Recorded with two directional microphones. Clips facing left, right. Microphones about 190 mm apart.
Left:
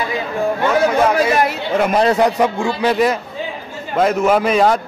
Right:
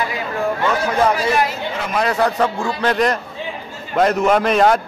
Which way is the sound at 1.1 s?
55° left (ahead or behind).